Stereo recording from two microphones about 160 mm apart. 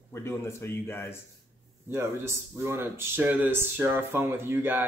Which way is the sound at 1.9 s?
15° right (ahead or behind).